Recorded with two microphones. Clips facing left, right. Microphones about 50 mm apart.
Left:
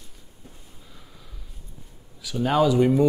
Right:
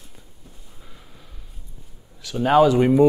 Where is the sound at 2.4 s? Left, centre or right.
Right.